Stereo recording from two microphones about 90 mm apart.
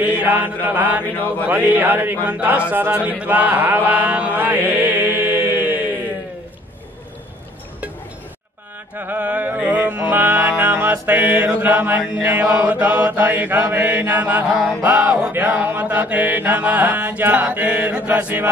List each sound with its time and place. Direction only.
0.0 s music: 20° right (ahead or behind)
2.2 s mantra: 15° right (ahead or behind)
2.9 s chant: 15° right (ahead or behind)
8.9 s music: 20° right (ahead or behind)
12.3 s mantra: 15° right (ahead or behind)
13.7 s music: 20° right (ahead or behind)
15.3 s mantra: 20° right (ahead or behind)